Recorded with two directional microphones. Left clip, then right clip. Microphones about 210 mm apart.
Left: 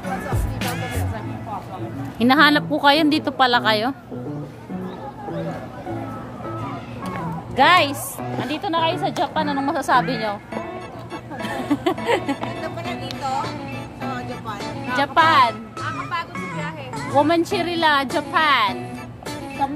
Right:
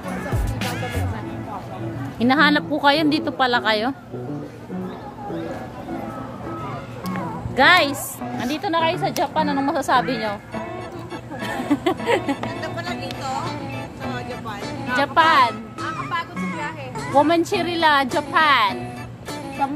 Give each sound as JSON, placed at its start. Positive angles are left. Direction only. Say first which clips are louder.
{"t": 2.1, "sound": "a woman's voice", "louder": "left 2 dB", "side_deg": 10}
{"t": 7.5, "sound": "a woman's voice", "louder": "even", "side_deg": 5}
{"t": 11.4, "sound": "speech", "louder": "right 1 dB", "side_deg": 5}
{"t": 12.6, "sound": "music", "louder": "even", "side_deg": -30}
{"t": 15.0, "sound": "a woman's voice", "louder": "even", "side_deg": 15}